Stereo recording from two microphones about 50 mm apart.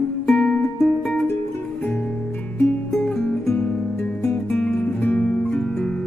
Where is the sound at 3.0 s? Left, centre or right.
Left.